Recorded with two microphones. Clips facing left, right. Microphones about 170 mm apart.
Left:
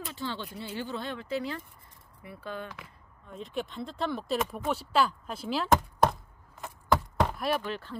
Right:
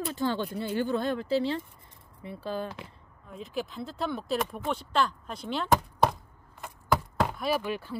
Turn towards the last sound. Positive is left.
turn(degrees=-10)  # may be behind; listen again after turning